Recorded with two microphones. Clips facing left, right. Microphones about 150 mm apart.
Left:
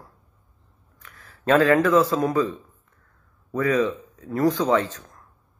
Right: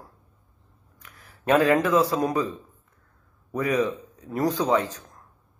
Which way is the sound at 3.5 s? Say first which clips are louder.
Left 2 dB; 15° right (ahead or behind).